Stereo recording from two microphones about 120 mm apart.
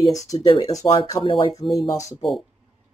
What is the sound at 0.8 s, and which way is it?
Speech, 50° left (ahead or behind).